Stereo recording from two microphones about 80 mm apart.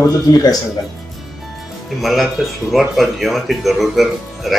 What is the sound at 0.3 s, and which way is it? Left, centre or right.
Speech, left.